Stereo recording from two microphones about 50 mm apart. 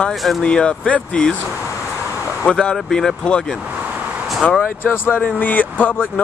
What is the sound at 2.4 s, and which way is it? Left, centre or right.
Speech, centre.